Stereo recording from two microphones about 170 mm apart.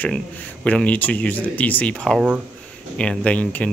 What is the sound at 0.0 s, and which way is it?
Speech, 10° left (ahead or behind).